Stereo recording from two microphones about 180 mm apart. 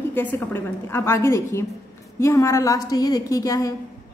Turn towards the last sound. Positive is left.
turn(degrees=20)  # may be behind; listen again after turning